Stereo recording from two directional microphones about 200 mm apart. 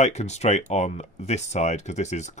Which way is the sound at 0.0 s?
35° left (ahead or behind).